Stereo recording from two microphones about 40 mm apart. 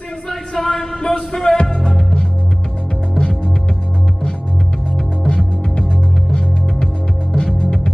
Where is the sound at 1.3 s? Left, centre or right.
Centre.